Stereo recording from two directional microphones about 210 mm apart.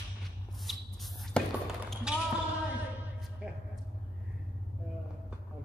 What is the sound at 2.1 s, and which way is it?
Basketball bounce, 5° right (ahead or behind).